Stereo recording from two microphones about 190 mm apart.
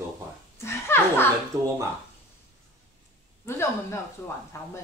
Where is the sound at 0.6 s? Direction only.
15° left (ahead or behind).